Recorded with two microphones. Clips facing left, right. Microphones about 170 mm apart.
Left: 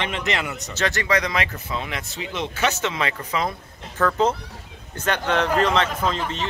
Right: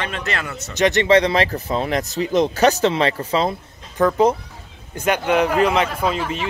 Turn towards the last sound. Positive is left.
turn(degrees=-10)  # may be behind; listen again after turning